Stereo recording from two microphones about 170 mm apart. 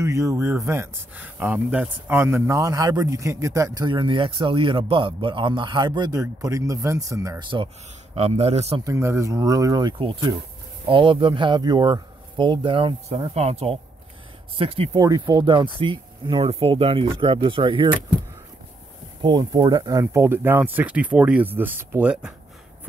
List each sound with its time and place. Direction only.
0.0 s speech: 15° right (ahead or behind); by 8.8 s 35° right (ahead or behind)
8.8 s speech: 15° right (ahead or behind); by 14.9 s 35° right (ahead or behind)
15.0 s speech: 20° right (ahead or behind)
19.2 s speech: 30° right (ahead or behind); by 22.3 s 5° right (ahead or behind)